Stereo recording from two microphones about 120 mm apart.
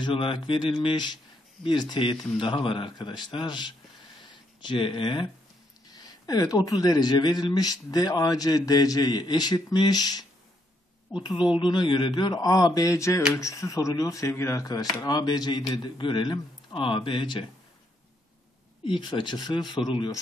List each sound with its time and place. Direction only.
0.0 s speech: 45° left (ahead or behind)
5.9 s speech: 35° left (ahead or behind)
11.5 s speech: 40° left (ahead or behind)
18.9 s speech: 40° left (ahead or behind)